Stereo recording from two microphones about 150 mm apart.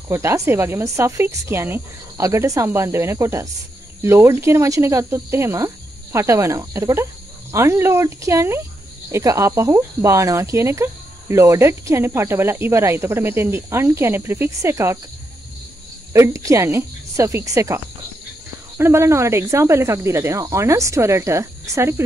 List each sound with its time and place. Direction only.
0.1 s speech: 15° right (ahead or behind)
16.1 s speech: 20° right (ahead or behind)